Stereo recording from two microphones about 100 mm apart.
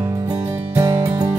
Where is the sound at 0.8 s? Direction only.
35° right (ahead or behind).